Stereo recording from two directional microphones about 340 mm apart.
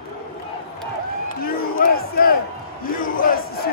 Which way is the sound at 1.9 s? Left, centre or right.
Left.